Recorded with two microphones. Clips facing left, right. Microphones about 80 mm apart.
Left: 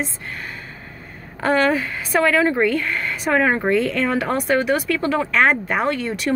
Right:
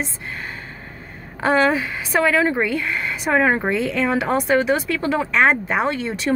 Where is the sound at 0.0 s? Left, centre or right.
Right.